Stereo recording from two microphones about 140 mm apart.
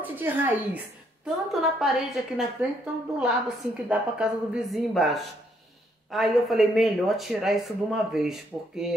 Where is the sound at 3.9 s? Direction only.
5° right (ahead or behind).